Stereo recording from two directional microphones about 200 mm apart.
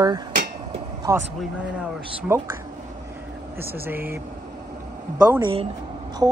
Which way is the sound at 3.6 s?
10° right (ahead or behind).